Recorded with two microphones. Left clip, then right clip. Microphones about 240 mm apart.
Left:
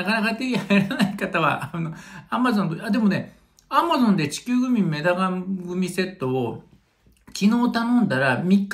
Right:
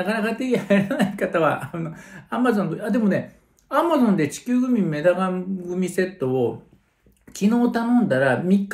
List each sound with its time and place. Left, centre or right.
0.0 s speech: centre
1.3 s speech: left